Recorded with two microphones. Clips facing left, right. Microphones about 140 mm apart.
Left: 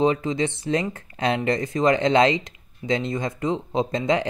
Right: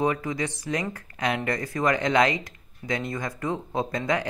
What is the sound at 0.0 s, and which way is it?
Speech, 20° left (ahead or behind).